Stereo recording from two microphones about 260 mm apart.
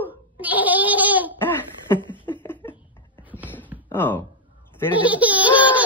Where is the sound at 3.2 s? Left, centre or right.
Centre.